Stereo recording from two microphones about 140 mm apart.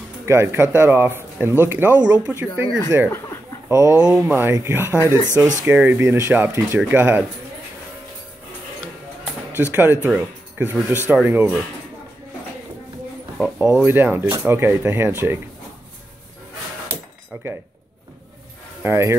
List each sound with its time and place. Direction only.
0.2 s speech: 20° right (ahead or behind)
9.2 s speech: 10° right (ahead or behind)
13.6 s speech: 10° right (ahead or behind)
18.8 s speech: 20° right (ahead or behind)